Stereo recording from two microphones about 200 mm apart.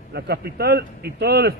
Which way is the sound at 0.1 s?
55° right (ahead or behind).